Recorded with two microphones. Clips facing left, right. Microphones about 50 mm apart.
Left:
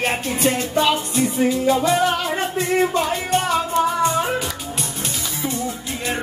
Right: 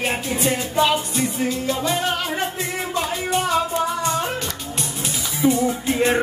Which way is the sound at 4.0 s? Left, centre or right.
Left.